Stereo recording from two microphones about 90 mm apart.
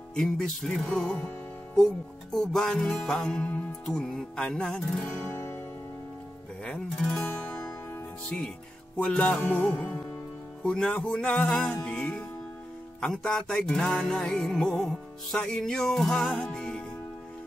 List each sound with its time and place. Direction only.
0.1 s music: 5° left (ahead or behind)
5.3 s music: 25° left (ahead or behind)
6.6 s music: 10° left (ahead or behind)
8.9 s music: 10° left (ahead or behind)